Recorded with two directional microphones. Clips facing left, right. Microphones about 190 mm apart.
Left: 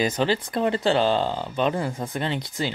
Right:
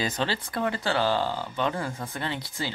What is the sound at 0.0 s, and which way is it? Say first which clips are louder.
Speech: left 6 dB; 15° left (ahead or behind).